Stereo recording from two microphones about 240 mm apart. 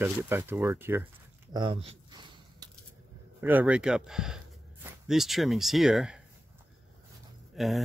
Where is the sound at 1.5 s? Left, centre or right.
Centre.